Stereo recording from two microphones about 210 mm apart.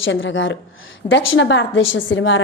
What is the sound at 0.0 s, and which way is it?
A woman's voice, 65° left (ahead or behind).